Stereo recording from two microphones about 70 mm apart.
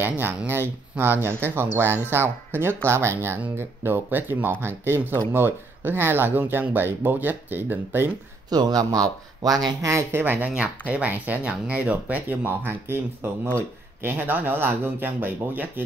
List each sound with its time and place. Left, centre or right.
0.0 s speech: right
8.5 s speech: right
9.8 s speech: right
10.1 s speech: right